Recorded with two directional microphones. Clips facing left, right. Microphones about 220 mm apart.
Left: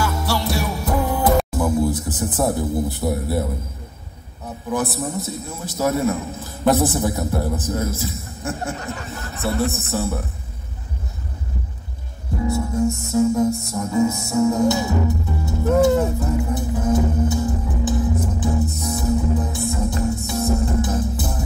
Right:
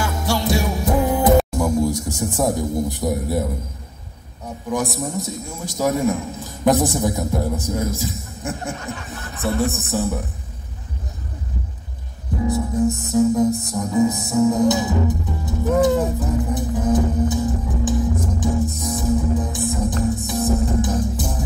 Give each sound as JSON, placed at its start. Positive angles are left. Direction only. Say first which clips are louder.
{"t": 0.0, "sound": "music", "louder": "right 1 dB", "side_deg": -15}
{"t": 1.5, "sound": "speech", "louder": "even", "side_deg": -15}
{"t": 4.6, "sound": "a man's voice", "louder": "even", "side_deg": -15}
{"t": 12.4, "sound": "a man's voice", "louder": "right 1 dB", "side_deg": -15}
{"t": 16.4, "sound": "music", "louder": "right 1 dB", "side_deg": -15}